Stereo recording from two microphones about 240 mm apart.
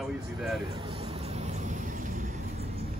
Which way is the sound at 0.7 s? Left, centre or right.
Right.